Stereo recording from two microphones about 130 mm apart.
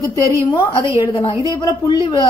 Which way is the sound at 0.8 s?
20° right (ahead or behind).